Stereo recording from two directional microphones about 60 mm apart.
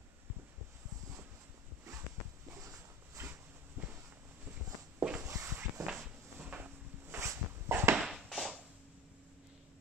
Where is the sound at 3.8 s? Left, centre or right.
Right.